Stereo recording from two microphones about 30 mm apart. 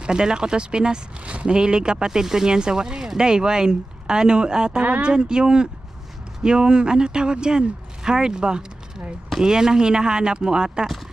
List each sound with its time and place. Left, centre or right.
0.0 s speech: right
2.0 s speech: centre